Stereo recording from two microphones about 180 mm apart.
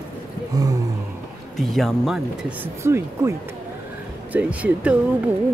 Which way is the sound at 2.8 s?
15° right (ahead or behind).